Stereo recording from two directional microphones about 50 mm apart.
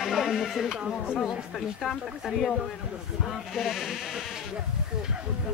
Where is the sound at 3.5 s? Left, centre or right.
Centre.